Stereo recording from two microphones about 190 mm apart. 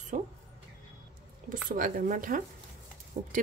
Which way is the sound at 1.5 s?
45° right (ahead or behind).